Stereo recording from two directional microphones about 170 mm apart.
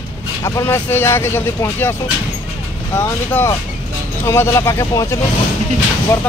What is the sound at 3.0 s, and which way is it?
Speech, 15° left (ahead or behind).